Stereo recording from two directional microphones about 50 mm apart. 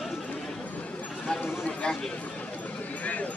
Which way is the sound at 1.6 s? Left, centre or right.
Left.